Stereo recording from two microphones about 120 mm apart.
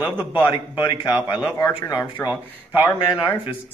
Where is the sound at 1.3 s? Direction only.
35° left (ahead or behind).